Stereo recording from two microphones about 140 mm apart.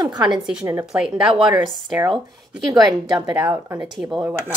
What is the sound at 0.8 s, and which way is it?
Speech, 5° right (ahead or behind).